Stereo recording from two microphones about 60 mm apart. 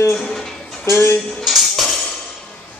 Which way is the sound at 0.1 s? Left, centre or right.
Centre.